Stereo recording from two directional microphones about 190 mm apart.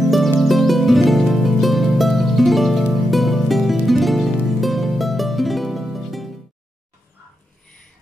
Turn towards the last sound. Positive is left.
turn(degrees=0)  # may be behind; listen again after turning